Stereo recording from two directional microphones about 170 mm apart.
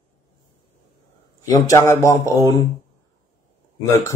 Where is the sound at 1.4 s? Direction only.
20° left (ahead or behind).